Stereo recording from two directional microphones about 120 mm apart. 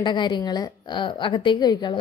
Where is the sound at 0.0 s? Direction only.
40° left (ahead or behind).